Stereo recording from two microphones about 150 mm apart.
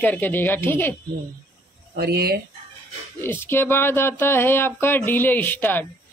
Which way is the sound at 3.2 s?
15° left (ahead or behind).